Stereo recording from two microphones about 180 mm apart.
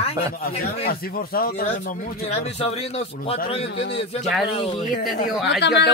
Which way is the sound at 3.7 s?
70° left (ahead or behind).